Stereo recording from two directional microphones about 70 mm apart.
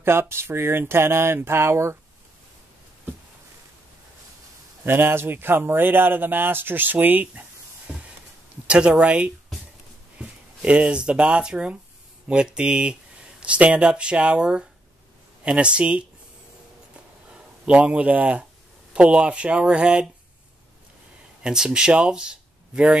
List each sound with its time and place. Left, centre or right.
0.0 s speech: right
4.8 s speech: right
8.6 s speech: centre
16.9 s a sound: centre
18.9 s speech: centre
21.4 s speech: centre